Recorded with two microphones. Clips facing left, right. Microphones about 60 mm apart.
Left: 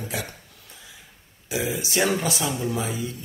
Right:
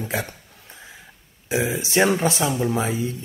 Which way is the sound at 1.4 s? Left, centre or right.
Right.